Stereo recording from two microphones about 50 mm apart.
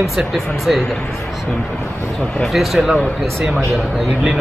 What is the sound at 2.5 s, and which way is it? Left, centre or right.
A man's voice, centre.